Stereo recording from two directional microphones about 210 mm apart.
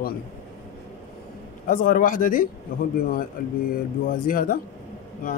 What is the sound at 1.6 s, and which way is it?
Speech, 40° left (ahead or behind).